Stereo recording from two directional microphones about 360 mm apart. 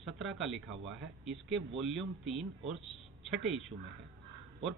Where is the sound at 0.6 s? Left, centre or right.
Right.